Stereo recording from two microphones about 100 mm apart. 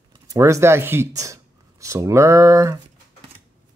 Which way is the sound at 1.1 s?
35° right (ahead or behind).